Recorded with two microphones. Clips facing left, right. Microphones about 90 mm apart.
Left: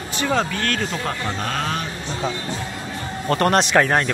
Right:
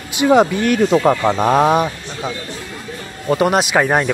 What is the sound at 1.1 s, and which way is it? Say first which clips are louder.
Speech: right 10 dB; 45° right (ahead or behind).